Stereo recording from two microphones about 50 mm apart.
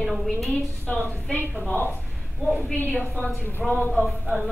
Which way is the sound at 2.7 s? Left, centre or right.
Left.